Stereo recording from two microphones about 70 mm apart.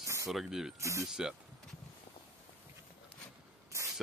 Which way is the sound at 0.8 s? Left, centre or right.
Right.